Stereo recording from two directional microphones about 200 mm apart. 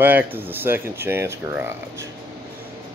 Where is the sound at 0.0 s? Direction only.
10° right (ahead or behind).